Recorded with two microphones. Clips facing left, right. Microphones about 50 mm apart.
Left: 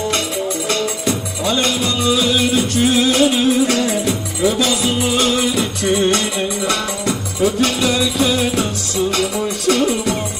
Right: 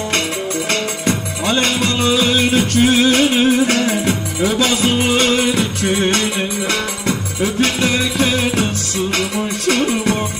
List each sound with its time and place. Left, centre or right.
0.7 s music: right
9.7 s music: right